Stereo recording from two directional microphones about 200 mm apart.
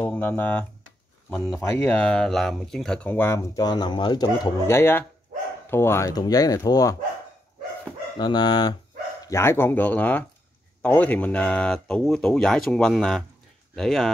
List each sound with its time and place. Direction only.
0.0 s speech: 10° left (ahead or behind)
8.2 s speech: 20° left (ahead or behind); by 14.1 s centre (ahead or behind)